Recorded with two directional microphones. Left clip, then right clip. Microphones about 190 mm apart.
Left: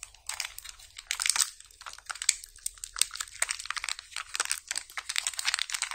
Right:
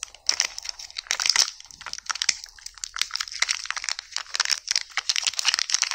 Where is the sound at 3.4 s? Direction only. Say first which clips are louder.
Right 6 dB; 10° right (ahead or behind).